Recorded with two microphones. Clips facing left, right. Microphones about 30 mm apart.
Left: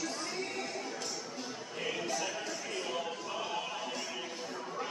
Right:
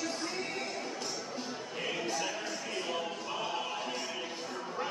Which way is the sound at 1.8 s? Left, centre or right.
Centre.